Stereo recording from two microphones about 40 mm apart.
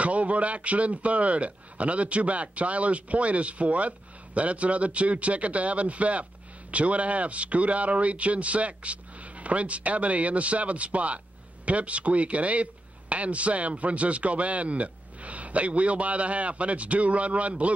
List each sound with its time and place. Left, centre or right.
0.0 s a man's voice: right